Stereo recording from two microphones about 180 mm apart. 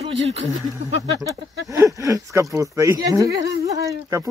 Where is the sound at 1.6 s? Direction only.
20° right (ahead or behind).